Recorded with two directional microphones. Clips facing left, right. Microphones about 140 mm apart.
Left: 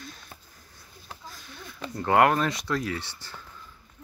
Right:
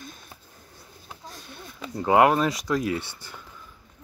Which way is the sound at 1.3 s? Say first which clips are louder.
Right 2 dB; 25° right (ahead or behind).